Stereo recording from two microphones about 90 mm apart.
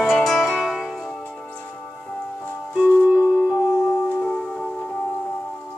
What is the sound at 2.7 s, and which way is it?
Music, 15° right (ahead or behind).